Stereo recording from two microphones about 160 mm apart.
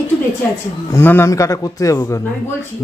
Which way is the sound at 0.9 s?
15° left (ahead or behind).